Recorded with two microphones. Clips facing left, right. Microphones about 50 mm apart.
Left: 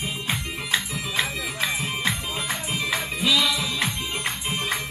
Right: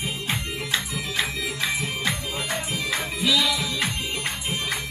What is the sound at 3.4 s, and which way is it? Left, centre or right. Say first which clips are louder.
Music: even; centre.